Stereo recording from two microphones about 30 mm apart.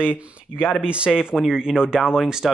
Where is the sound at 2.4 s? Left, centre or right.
Centre.